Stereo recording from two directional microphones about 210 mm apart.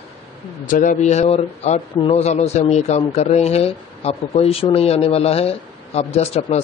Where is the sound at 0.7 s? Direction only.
35° left (ahead or behind).